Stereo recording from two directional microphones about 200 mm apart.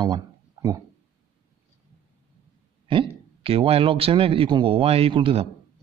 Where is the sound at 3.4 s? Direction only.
30° right (ahead or behind).